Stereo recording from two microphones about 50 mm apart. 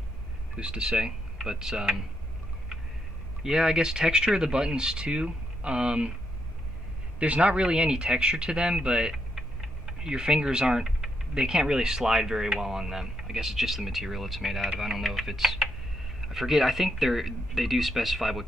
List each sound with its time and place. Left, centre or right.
0.6 s speech: centre
3.4 s speech: centre
7.2 s speech: right
9.3 s speech: centre